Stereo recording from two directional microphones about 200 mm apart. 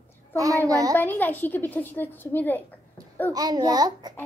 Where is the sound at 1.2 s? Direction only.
10° left (ahead or behind).